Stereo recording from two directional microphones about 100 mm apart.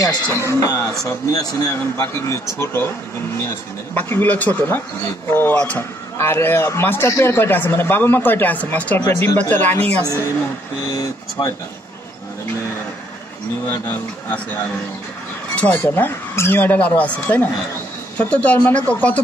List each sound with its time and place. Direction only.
0.0 s speech: 35° left (ahead or behind); by 10.0 s 15° left (ahead or behind)
10.0 s speech: 30° left (ahead or behind)
13.7 s speech: 20° left (ahead or behind)